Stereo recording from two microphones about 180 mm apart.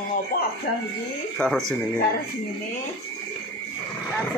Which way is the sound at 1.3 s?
5° left (ahead or behind).